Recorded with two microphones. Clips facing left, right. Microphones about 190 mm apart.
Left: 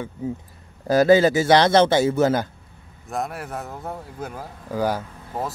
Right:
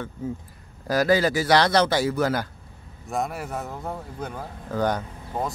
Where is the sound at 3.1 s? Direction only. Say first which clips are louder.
Even; centre (ahead or behind).